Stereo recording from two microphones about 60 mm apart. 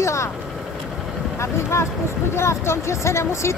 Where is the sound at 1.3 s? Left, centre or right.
Left.